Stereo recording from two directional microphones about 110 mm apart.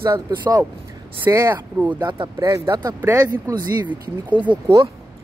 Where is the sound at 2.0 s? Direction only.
45° right (ahead or behind).